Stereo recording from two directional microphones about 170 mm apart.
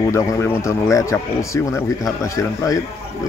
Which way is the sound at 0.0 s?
20° left (ahead or behind).